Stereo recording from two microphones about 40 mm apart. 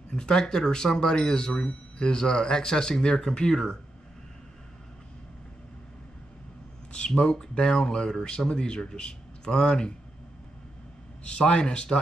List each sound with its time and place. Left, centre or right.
0.1 s speech: left
7.2 s speech: left
11.2 s speech: left